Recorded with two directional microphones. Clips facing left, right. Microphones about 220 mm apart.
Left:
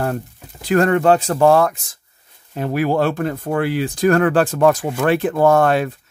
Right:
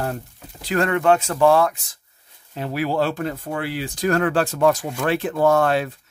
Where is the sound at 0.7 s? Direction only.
40° left (ahead or behind).